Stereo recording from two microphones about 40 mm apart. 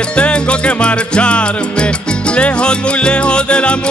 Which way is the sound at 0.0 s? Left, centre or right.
Left.